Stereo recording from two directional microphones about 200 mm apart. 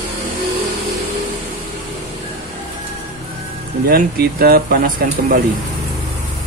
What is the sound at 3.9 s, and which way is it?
Speech, 45° right (ahead or behind).